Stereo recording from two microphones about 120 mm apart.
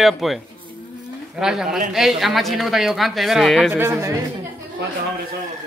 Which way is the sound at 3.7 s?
20° right (ahead or behind).